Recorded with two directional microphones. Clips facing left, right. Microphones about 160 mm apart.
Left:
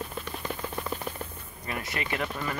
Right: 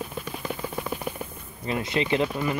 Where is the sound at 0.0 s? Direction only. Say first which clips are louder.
Right 2 dB; 5° right (ahead or behind).